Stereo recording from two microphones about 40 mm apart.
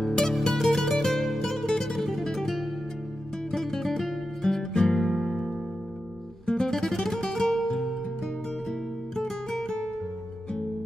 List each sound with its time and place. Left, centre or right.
0.0 s music: centre
3.5 s music: centre
6.4 s guitar: left
6.7 s music: centre
9.1 s music: centre